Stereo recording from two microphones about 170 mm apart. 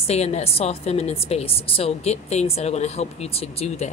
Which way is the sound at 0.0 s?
40° left (ahead or behind).